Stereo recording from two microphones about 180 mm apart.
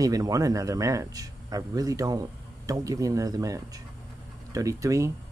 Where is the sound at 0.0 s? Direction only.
20° right (ahead or behind).